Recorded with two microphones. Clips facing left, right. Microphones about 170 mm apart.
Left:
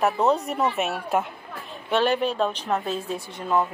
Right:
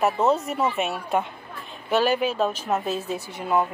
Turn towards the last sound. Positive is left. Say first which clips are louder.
# even
turn(degrees=-10)  # may be behind; listen again after turning